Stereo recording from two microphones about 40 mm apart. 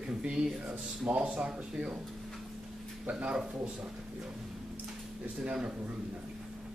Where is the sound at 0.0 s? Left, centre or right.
Right.